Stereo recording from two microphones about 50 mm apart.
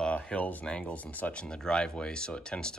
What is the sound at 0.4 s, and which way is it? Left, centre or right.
Speech, left.